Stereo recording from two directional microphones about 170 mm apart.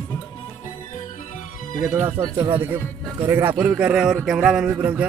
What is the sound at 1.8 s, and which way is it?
Speech, 10° right (ahead or behind).